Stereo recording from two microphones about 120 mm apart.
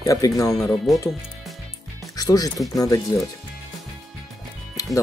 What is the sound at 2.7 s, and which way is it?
Speech, 30° left (ahead or behind).